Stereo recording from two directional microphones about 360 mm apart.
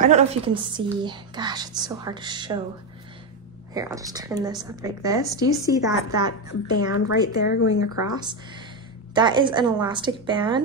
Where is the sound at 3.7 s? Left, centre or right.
Centre.